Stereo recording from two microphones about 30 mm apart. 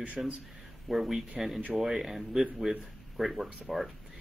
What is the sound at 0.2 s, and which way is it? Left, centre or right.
Speech, centre.